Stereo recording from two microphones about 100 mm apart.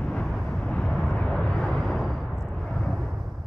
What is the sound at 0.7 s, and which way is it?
Vehicle, 10° left (ahead or behind).